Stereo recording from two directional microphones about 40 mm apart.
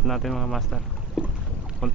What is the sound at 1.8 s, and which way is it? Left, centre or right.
Speech, centre.